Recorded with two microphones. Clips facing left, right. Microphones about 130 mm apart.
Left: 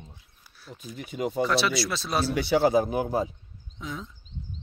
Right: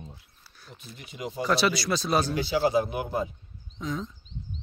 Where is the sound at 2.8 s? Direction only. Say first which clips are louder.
Left 3 dB; 35° left (ahead or behind).